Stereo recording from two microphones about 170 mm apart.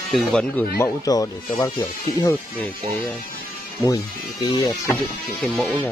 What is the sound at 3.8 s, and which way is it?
Speech, 20° left (ahead or behind).